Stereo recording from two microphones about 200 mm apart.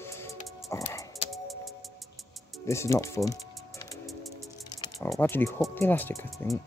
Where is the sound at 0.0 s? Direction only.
15° left (ahead or behind).